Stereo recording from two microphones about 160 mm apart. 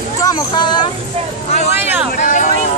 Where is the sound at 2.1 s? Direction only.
55° left (ahead or behind).